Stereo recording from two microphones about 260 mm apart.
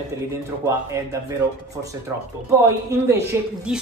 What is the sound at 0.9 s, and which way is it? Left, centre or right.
Speech, centre.